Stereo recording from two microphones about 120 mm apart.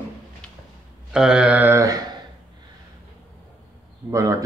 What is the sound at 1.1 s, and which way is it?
Mantra, 5° right (ahead or behind).